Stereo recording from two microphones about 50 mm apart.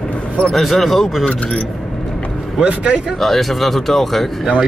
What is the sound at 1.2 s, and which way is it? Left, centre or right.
Speech, left.